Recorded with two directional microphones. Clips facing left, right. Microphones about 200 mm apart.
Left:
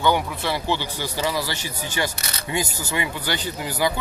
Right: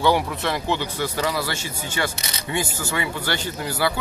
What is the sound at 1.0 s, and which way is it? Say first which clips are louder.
Speech: even; 10° left (ahead or behind).